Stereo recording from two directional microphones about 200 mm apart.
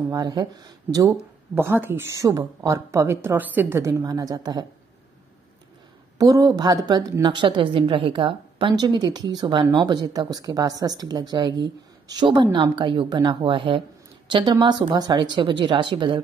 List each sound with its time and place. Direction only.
0.1 s a woman's voice: 20° right (ahead or behind)
1.5 s speech: 10° right (ahead or behind)
6.1 s a woman's voice: 15° right (ahead or behind)